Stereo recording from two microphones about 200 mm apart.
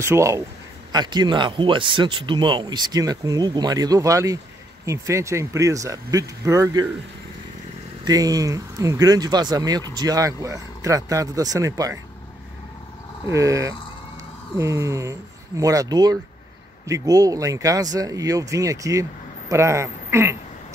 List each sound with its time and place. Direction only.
0.0 s speech: 15° right (ahead or behind)
8.0 s speech: 20° right (ahead or behind)
13.3 s speech: 15° right (ahead or behind)